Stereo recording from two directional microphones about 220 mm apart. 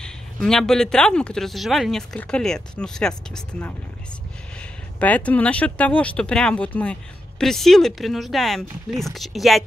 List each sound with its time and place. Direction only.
0.0 s speech: centre (ahead or behind)